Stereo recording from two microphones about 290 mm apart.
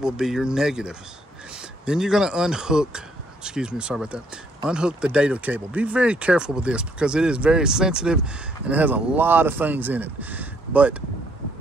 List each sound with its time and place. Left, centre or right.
0.0 s speech: centre